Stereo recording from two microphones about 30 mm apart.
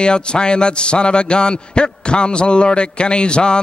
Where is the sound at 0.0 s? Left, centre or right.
Left.